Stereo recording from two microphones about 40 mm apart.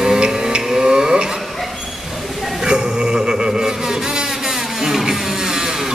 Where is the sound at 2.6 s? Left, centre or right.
Centre.